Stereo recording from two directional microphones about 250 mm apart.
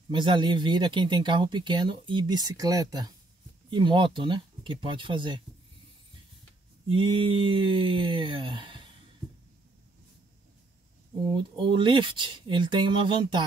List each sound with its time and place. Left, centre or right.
0.1 s speech: centre
6.9 s speech: centre
11.3 s speech: right